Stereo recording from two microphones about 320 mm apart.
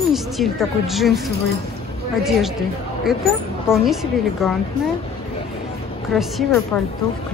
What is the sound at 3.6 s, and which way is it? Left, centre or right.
Speech, centre.